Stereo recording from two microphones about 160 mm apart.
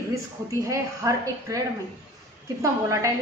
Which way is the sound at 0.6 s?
20° right (ahead or behind).